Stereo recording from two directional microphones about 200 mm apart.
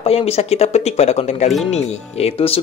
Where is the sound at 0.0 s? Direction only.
30° left (ahead or behind).